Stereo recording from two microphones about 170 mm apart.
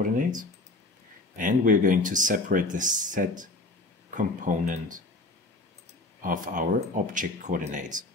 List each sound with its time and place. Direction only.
1.3 s speech: 50° right (ahead or behind)
6.2 s speech: 50° right (ahead or behind)